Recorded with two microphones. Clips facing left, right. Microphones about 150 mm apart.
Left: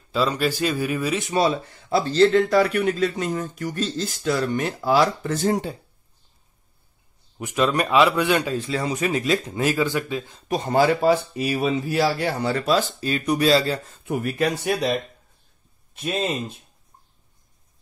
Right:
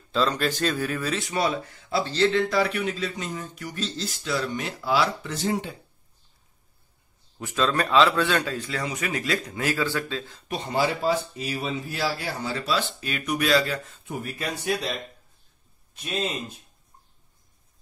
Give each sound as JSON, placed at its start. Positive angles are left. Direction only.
{"t": 0.1, "sound": "a man's voice", "side_deg": 10}
{"t": 1.9, "sound": "speech", "side_deg": 40}
{"t": 7.3, "sound": "a man's voice", "side_deg": 15}
{"t": 8.5, "sound": "speech", "side_deg": 25}
{"t": 10.5, "sound": "speech", "side_deg": 45}
{"t": 14.0, "sound": "speech", "side_deg": 70}